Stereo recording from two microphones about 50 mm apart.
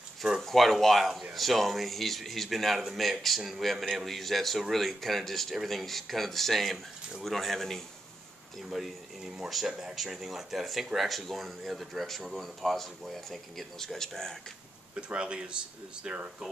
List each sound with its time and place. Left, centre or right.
0.4 s speech: centre
15.0 s speech: right